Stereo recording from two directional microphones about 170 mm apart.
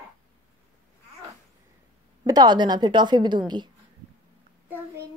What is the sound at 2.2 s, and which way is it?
A woman's voice, 25° right (ahead or behind).